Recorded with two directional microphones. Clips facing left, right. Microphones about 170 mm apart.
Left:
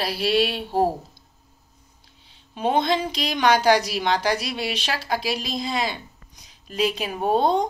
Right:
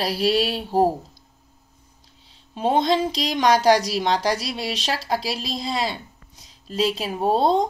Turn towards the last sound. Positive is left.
turn(degrees=-30)  # may be behind; listen again after turning